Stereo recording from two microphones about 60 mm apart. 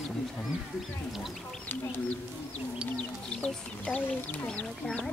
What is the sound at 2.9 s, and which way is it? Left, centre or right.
Speech, left.